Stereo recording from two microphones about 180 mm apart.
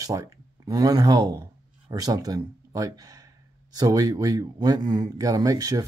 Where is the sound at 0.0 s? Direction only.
20° right (ahead or behind).